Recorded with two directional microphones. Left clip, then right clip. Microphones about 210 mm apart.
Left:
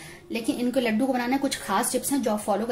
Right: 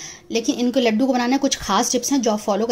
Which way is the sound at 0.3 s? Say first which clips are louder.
Right 6 dB; 40° right (ahead or behind).